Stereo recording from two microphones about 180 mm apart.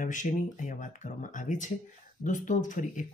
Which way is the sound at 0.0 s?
45° left (ahead or behind).